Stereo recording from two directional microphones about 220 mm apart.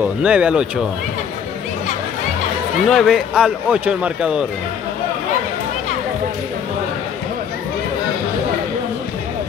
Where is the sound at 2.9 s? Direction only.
Centre (ahead or behind).